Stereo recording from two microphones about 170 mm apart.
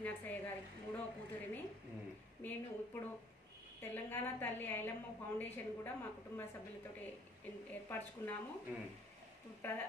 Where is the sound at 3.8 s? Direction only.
10° left (ahead or behind).